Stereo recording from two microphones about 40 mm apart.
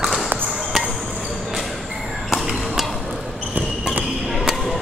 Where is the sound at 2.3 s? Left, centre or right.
Centre.